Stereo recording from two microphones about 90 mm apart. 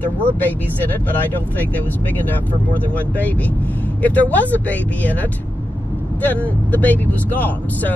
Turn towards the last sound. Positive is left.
turn(degrees=20)  # may be behind; listen again after turning